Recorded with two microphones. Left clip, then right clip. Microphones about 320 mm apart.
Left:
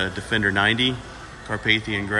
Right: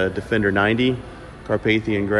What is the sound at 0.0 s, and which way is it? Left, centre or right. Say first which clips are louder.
Speech: right 2 dB; centre.